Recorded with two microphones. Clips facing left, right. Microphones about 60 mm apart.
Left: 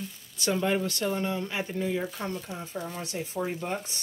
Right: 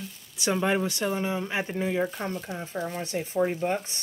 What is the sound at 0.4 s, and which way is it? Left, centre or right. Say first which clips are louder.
Speech: right 2 dB; centre.